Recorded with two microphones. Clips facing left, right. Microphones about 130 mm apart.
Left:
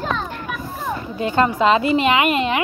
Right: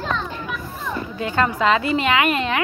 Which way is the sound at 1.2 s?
25° left (ahead or behind).